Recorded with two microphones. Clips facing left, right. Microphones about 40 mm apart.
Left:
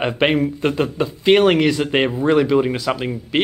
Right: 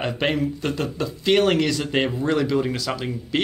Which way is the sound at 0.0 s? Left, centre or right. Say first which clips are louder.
Left 5 dB; left.